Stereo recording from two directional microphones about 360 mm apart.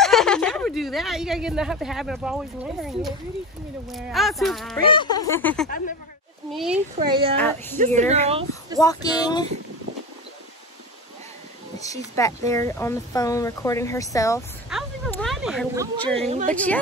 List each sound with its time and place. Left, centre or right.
0.0 s speech: centre
4.8 s speech: centre
7.1 s speech: centre
7.3 s speech: centre
7.8 s speech: centre
8.7 s speech: centre
11.8 s speech: centre
16.3 s speech: centre